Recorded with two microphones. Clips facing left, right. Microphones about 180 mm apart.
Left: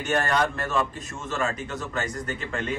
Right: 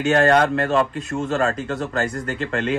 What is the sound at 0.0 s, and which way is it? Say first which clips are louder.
Speech: right 8 dB; 75° right (ahead or behind).